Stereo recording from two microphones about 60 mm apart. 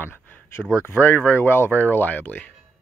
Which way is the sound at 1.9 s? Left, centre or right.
Left.